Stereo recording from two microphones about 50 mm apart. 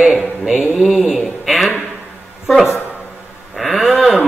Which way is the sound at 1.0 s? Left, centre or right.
Centre.